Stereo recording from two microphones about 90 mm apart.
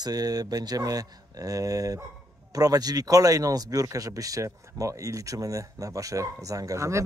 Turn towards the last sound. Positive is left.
turn(degrees=-35)  # may be behind; listen again after turning